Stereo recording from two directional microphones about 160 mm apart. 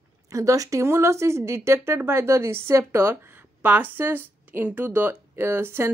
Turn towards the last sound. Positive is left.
turn(degrees=-15)  # may be behind; listen again after turning